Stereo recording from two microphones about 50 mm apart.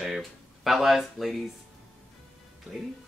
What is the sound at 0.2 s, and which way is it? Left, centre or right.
Speech, centre.